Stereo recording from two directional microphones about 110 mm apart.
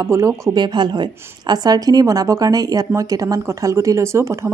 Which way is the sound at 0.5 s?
45° right (ahead or behind).